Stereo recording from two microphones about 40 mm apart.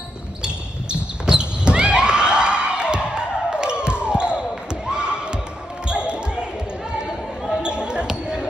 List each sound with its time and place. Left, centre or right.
1.2 s a sound: right
6.0 s basketball bounce: right
7.6 s basketball bounce: right